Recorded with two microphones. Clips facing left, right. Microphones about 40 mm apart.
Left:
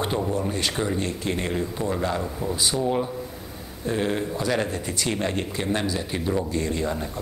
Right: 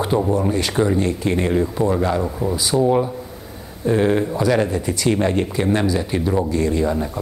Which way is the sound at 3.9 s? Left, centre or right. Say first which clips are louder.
Right 8 dB; centre.